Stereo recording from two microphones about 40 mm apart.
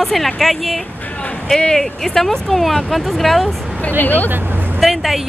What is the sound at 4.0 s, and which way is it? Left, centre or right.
Speech, left.